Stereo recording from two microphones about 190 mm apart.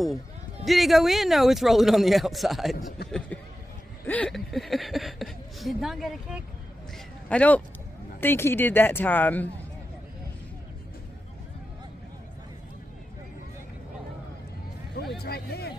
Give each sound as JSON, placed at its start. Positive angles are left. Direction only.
{"t": 0.7, "sound": "speech", "side_deg": 0}
{"t": 3.1, "sound": "a sound", "side_deg": 5}
{"t": 4.0, "sound": "speech", "side_deg": 5}
{"t": 15.1, "sound": "speech", "side_deg": 55}